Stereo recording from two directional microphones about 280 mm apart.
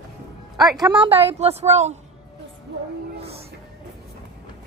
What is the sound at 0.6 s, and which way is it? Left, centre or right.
A woman's voice, centre.